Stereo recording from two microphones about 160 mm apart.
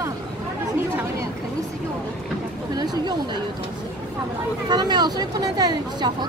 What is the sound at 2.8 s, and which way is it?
Speech, 25° right (ahead or behind).